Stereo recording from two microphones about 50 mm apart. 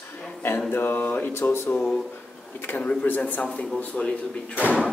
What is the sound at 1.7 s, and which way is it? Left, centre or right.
Speech, left.